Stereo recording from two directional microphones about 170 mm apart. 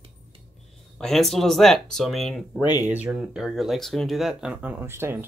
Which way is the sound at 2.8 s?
10° right (ahead or behind).